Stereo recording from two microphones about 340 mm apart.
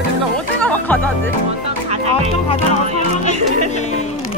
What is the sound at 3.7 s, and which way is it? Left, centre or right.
Speech, centre.